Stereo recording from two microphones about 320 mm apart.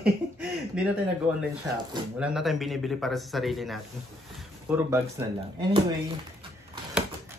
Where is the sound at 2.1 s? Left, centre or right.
Centre.